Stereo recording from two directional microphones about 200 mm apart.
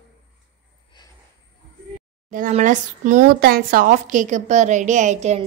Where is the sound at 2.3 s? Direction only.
40° right (ahead or behind).